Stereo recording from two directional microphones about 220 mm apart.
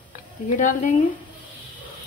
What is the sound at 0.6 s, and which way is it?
Speech, 35° left (ahead or behind).